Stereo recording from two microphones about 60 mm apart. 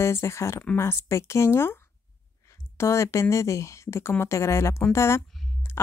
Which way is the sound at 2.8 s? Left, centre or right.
Left.